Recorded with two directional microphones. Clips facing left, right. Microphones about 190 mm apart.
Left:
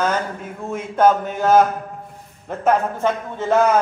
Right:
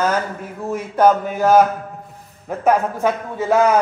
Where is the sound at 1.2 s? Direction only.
5° right (ahead or behind).